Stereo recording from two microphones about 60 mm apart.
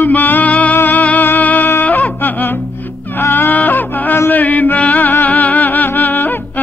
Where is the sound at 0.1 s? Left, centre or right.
Left.